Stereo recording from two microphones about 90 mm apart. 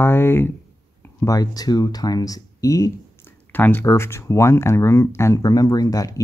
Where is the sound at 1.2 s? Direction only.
40° left (ahead or behind).